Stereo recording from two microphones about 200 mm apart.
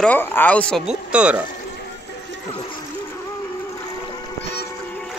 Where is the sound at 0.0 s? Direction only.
10° left (ahead or behind).